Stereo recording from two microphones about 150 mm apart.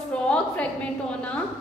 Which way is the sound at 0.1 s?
5° left (ahead or behind).